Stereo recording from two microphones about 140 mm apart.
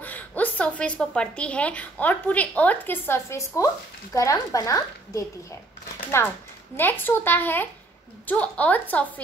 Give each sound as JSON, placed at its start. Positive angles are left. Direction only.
{"t": 0.0, "sound": "a woman's voice", "side_deg": 10}